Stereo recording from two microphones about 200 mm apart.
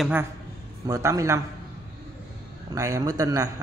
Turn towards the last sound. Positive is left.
turn(degrees=-15)  # may be behind; listen again after turning